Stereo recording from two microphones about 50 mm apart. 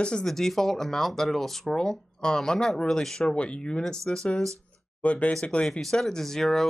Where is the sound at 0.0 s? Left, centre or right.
Centre.